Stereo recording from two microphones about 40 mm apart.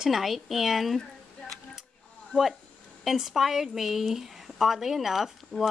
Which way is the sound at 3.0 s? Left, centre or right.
Centre.